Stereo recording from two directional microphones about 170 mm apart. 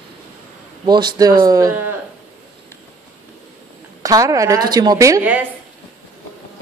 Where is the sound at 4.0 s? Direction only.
20° right (ahead or behind).